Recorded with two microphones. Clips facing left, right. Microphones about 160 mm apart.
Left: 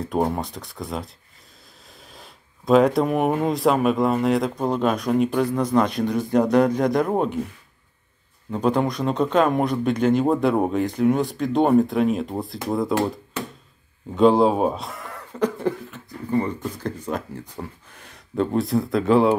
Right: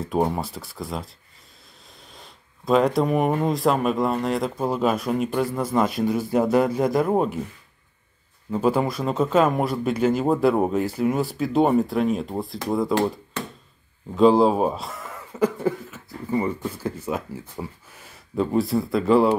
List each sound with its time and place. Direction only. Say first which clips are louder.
0.0 s speech: even; centre (ahead or behind)
8.5 s speech: even; 5° right (ahead or behind)